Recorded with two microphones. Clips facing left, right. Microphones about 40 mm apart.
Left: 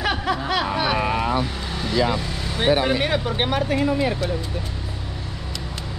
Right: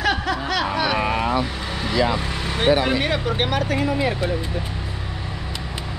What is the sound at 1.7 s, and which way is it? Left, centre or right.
Vehicle, centre.